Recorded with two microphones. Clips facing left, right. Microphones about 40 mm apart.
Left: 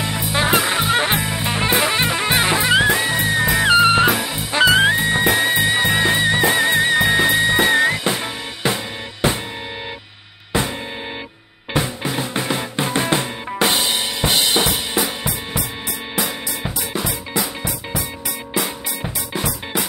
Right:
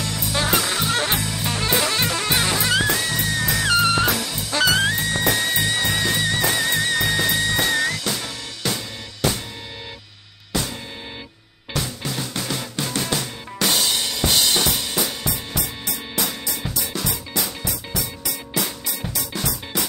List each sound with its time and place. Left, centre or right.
0.0 s music: left
10.5 s music: left
11.7 s music: left